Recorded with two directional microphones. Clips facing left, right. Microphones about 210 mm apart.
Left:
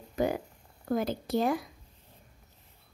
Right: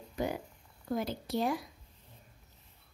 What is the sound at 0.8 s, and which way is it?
Speech, 50° left (ahead or behind).